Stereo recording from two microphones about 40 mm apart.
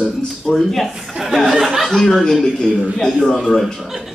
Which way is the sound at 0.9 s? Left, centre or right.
Centre.